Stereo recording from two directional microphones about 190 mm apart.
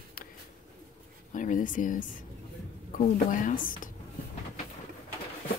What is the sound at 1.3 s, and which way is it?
A woman's voice, 45° left (ahead or behind).